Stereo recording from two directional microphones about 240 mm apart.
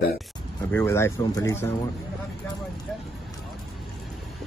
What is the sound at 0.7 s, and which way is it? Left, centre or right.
Speech, centre.